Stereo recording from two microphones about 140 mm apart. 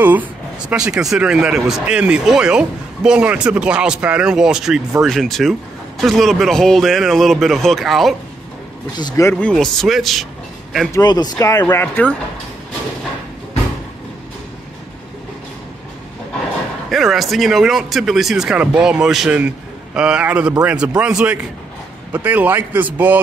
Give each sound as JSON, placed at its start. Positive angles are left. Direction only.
{"t": 0.0, "sound": "a sound", "side_deg": -10}
{"t": 1.1, "sound": "speech", "side_deg": -5}
{"t": 8.9, "sound": "speech", "side_deg": 25}
{"t": 9.3, "sound": "speech", "side_deg": 5}
{"t": 10.9, "sound": "speech", "side_deg": 30}
{"t": 11.6, "sound": "speech", "side_deg": 15}
{"t": 16.9, "sound": "speech", "side_deg": 0}